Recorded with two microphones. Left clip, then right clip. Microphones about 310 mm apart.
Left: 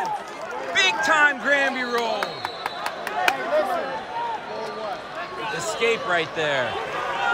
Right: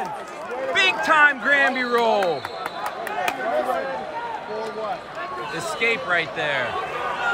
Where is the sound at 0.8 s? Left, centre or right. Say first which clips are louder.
Right 1 dB; centre.